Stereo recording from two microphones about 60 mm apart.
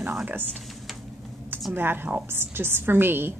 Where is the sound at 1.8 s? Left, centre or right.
Right.